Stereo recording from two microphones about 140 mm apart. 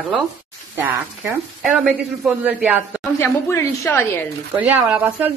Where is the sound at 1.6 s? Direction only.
5° right (ahead or behind).